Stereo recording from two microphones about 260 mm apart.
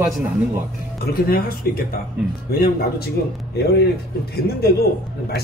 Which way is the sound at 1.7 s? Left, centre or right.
Left.